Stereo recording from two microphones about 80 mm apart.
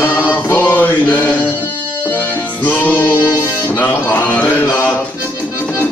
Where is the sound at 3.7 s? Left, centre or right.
Left.